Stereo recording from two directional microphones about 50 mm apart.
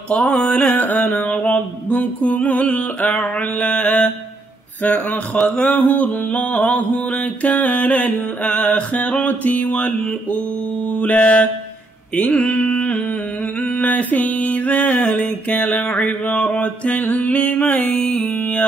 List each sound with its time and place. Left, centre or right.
0.1 s mantra: left
0.7 s mantra: left
9.2 s music: left
10.9 s mantra: left
13.6 s music: left
16.3 s mantra: left
17.8 s music: centre